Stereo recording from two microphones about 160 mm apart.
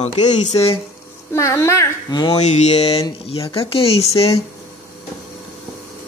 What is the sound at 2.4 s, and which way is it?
Speech, 45° left (ahead or behind).